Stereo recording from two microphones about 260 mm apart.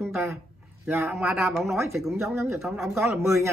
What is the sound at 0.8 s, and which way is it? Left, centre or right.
Speech, centre.